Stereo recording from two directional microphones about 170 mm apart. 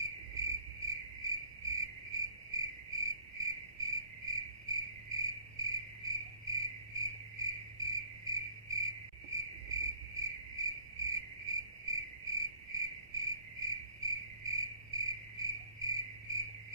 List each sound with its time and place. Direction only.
0.0 s cricket: 20° right (ahead or behind)
15.8 s frog: 20° right (ahead or behind)